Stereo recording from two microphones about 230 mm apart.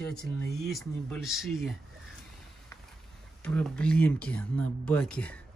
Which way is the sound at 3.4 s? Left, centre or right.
Centre.